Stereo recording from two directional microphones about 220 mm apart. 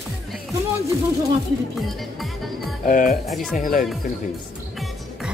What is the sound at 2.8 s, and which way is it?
Speech, 35° left (ahead or behind).